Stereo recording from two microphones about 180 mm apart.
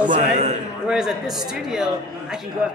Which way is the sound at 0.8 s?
Centre (ahead or behind).